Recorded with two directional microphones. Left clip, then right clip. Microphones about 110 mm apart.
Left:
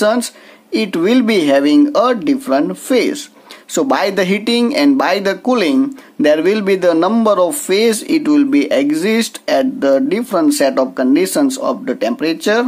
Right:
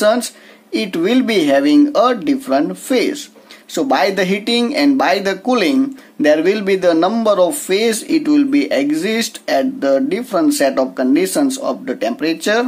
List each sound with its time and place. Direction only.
0.0 s speech: 30° left (ahead or behind)
3.7 s speech: 45° left (ahead or behind); by 12.6 s 30° left (ahead or behind)